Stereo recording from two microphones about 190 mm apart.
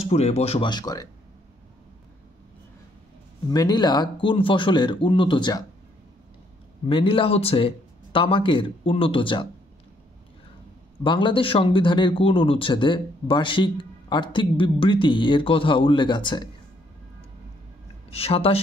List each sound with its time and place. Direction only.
0.0 s speech: 35° left (ahead or behind)
3.4 s speech: 20° left (ahead or behind)
6.9 s speech: 25° left (ahead or behind)
11.1 s speech: 25° left (ahead or behind)
18.1 s speech: 30° left (ahead or behind)